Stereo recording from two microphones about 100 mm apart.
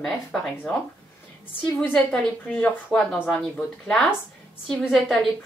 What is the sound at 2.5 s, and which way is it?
Speech, 5° left (ahead or behind).